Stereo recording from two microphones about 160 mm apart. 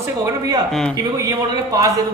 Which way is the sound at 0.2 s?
20° right (ahead or behind).